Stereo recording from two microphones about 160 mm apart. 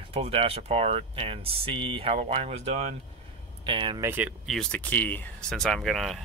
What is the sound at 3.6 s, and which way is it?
Speech, 30° right (ahead or behind).